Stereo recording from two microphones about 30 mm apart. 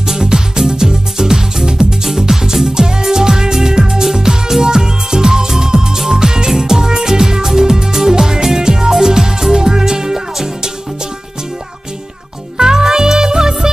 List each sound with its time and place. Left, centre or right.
0.0 s music: centre
12.5 s music: right